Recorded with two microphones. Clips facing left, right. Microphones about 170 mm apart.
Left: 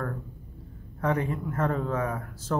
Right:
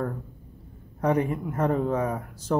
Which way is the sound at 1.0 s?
20° right (ahead or behind).